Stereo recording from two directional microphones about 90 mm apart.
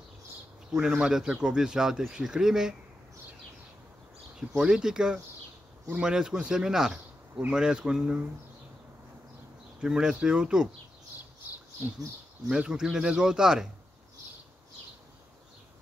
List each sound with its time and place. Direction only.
0.7 s speech: 10° right (ahead or behind)
4.4 s speech: 10° right (ahead or behind)
9.8 s speech: 10° right (ahead or behind)
11.4 s a sound: 20° right (ahead or behind)
12.4 s speech: 10° right (ahead or behind)